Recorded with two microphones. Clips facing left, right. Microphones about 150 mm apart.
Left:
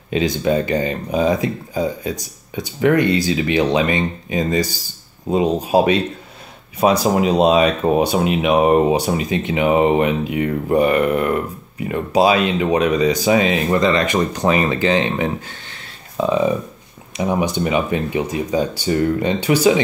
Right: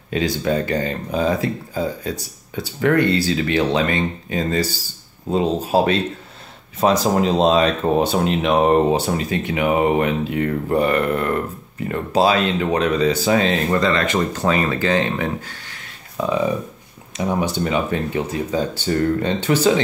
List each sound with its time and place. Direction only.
0.1 s speech: 20° left (ahead or behind)